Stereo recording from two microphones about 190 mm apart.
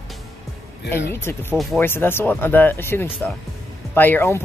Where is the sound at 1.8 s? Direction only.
10° left (ahead or behind).